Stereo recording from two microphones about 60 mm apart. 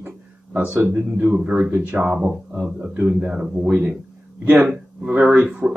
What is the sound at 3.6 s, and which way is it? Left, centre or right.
Speech, right.